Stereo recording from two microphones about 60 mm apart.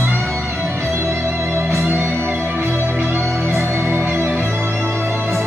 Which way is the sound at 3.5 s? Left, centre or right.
Right.